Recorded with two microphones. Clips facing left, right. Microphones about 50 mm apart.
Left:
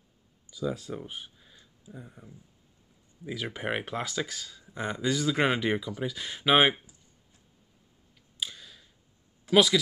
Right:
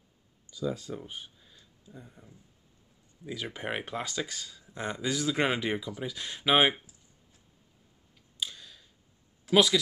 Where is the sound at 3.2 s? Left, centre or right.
Centre.